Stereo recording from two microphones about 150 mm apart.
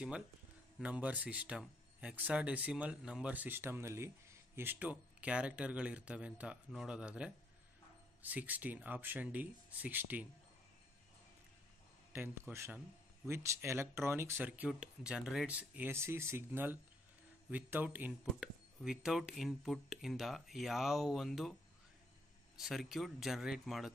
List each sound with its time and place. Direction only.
0.7 s speech: 10° right (ahead or behind)
12.1 s speech: 15° right (ahead or behind)
18.3 s speech: centre (ahead or behind)
22.6 s speech: centre (ahead or behind)